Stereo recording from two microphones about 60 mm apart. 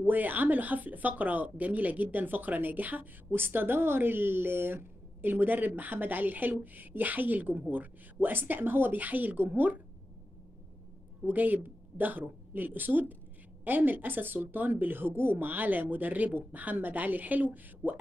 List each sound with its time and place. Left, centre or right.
0.0 s speech: right
11.2 s speech: right